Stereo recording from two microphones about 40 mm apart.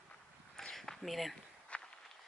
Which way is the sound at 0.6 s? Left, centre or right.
Centre.